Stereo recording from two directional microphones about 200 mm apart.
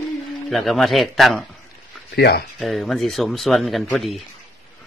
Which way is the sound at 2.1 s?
55° left (ahead or behind).